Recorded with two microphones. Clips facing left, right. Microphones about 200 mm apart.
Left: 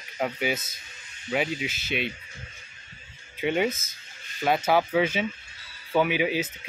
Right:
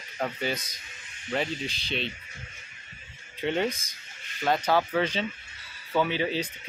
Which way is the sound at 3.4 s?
10° left (ahead or behind).